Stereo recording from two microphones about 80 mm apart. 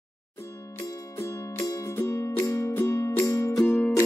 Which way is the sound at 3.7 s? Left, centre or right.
Left.